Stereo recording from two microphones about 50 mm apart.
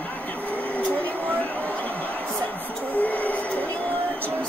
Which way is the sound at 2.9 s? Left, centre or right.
Left.